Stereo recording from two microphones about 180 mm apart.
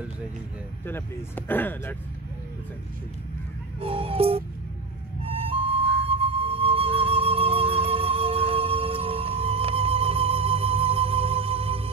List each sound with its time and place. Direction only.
0.8 s speech: 10° left (ahead or behind)
3.8 s music: 30° right (ahead or behind)